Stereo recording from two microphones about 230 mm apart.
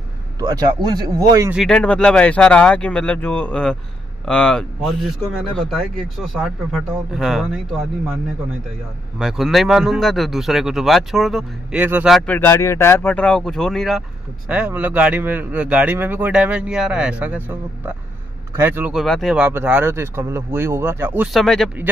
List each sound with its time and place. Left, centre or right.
0.4 s speech: centre
1.6 s speech: centre
9.2 s speech: centre
12.3 s speech: centre